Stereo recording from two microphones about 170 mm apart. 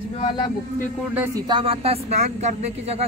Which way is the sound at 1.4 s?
30° right (ahead or behind).